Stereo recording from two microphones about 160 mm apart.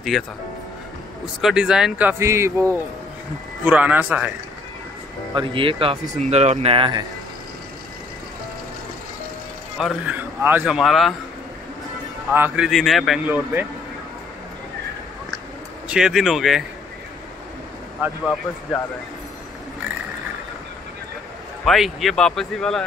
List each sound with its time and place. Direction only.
0.1 s speech: centre (ahead or behind)
5.3 s speech: 30° right (ahead or behind)
6.1 s speech: 45° right (ahead or behind); by 7.1 s 30° right (ahead or behind)
9.8 s speech: centre (ahead or behind)
10.1 s speech: 10° right (ahead or behind)
12.3 s speech: 10° right (ahead or behind)
13.2 s speech: 10° right (ahead or behind)
15.9 s speech: 5° right (ahead or behind)
21.6 s speech: centre (ahead or behind)